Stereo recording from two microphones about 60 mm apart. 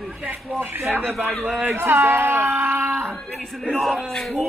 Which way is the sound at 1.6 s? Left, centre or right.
Right.